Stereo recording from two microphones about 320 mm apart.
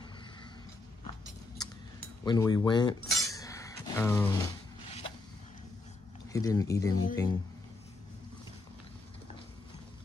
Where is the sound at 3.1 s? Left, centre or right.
Centre.